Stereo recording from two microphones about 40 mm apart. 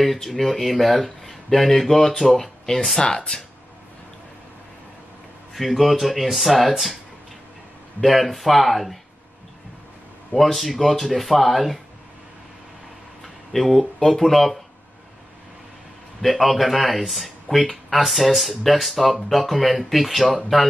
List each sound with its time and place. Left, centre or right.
0.0 s speech: centre
3.0 s speech: centre
5.5 s speech: centre
8.0 s speech: centre
10.3 s speech: centre
13.2 s speech: centre
16.2 s speech: centre